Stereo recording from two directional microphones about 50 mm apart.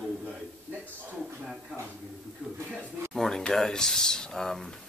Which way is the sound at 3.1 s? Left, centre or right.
Centre.